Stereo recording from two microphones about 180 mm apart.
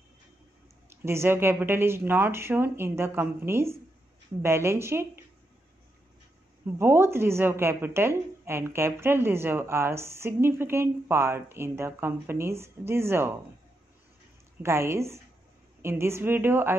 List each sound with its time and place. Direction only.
0.8 s a woman's voice: 15° right (ahead or behind)
6.6 s a woman's voice: 15° right (ahead or behind)
14.6 s a woman's voice: 15° right (ahead or behind)